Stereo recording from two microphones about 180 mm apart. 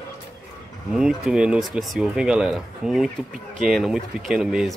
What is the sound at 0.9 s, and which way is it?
Speech, 5° right (ahead or behind).